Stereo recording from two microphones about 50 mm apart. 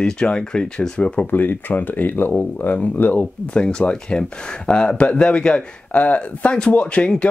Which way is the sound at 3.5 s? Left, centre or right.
Centre.